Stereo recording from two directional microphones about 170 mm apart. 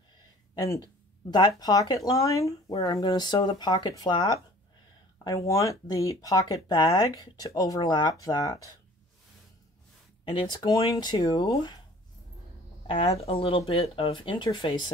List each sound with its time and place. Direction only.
0.6 s speech: 20° left (ahead or behind)
10.3 s speech: 25° left (ahead or behind)
12.8 s speech: 35° left (ahead or behind)